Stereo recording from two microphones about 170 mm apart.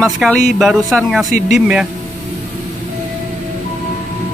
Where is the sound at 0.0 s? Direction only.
Centre (ahead or behind).